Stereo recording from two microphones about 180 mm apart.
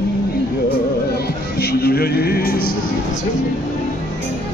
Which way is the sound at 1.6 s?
60° left (ahead or behind).